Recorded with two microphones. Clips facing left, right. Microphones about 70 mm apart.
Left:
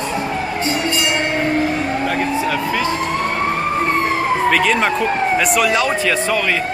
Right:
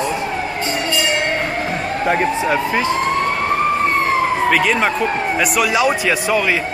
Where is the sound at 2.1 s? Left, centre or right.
Right.